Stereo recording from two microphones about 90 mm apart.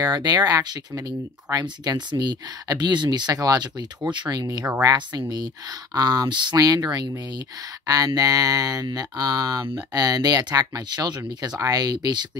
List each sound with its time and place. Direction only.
0.0 s speech: 50° right (ahead or behind)